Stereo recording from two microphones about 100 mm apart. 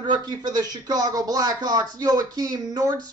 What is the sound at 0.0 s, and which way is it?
Speech, 45° right (ahead or behind).